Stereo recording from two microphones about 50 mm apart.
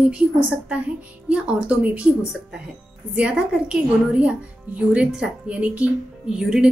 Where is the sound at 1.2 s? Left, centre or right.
Right.